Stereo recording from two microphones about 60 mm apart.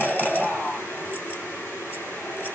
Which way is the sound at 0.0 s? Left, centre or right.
Left.